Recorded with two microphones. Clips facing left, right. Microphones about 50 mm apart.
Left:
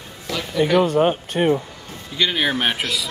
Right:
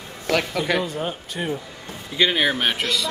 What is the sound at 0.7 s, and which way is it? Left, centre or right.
Speech, left.